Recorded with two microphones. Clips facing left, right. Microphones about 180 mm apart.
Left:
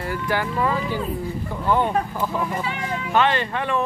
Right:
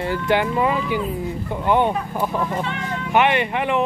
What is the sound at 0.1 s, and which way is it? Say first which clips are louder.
Speech: right 4 dB; 25° right (ahead or behind).